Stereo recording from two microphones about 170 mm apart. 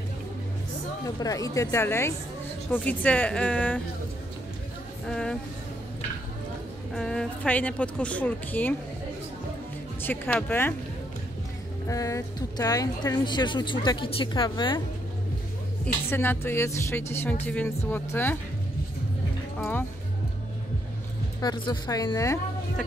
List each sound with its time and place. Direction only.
1.0 s a woman's voice: 20° left (ahead or behind)
5.0 s speech: 5° left (ahead or behind)
6.9 s a woman's voice: 5° left (ahead or behind)
10.0 s a woman's voice: 10° left (ahead or behind)
11.9 s speech: 20° left (ahead or behind)
15.8 s a woman's voice: 10° left (ahead or behind)
19.6 s a woman's voice: 15° left (ahead or behind)
21.4 s speech: 25° left (ahead or behind)